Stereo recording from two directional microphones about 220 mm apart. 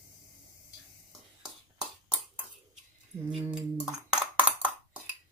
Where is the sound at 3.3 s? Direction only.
5° right (ahead or behind).